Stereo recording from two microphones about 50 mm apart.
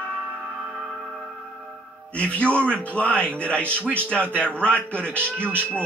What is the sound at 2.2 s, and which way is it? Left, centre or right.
A man's voice, left.